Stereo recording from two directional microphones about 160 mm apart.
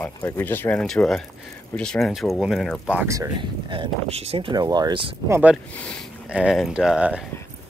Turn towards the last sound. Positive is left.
turn(degrees=-5)  # may be behind; listen again after turning